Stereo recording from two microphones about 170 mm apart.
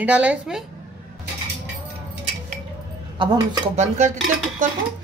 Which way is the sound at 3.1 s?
25° right (ahead or behind).